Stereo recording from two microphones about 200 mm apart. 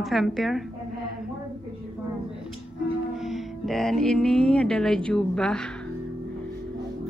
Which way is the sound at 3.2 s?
Centre (ahead or behind).